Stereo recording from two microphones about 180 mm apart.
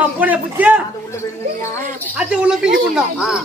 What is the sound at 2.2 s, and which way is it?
Speech, 5° right (ahead or behind).